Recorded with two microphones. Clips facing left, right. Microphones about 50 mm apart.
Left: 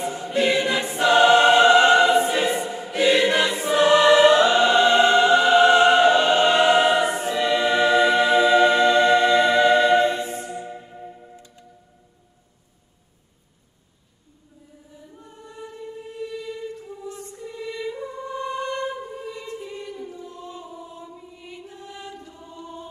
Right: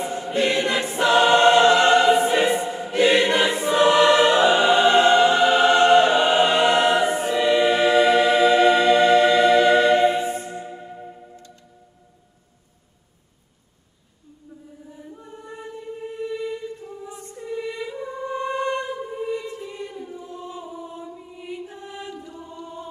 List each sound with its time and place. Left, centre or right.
0.0 s choir: centre
2.9 s choir: centre
5.8 s music: centre
7.2 s choir: centre
10.0 s music: centre
11.3 s music: centre
15.2 s choir: right
16.2 s a sound: right
17.0 s music: centre
20.9 s choir: centre
21.7 s chant: right
22.3 s choir: right